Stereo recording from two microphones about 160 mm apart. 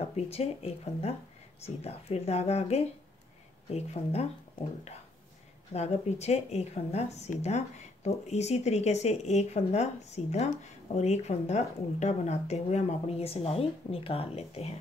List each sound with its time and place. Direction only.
0.0 s speech: 40° left (ahead or behind)